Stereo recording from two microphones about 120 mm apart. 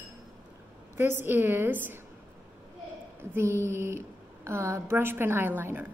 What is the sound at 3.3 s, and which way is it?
A woman's voice, 20° right (ahead or behind).